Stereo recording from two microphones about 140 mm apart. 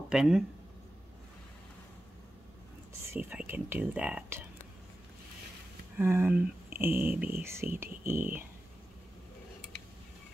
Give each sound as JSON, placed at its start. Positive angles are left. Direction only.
{"t": 0.1, "sound": "speech", "side_deg": -5}
{"t": 3.1, "sound": "speech", "side_deg": -10}
{"t": 5.9, "sound": "speech", "side_deg": -15}